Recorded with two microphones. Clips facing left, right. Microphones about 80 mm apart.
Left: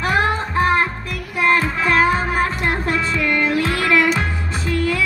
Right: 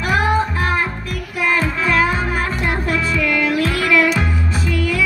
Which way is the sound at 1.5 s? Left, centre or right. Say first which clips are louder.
Even; left.